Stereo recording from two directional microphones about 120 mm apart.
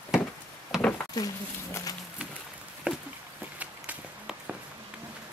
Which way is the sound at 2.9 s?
10° right (ahead or behind).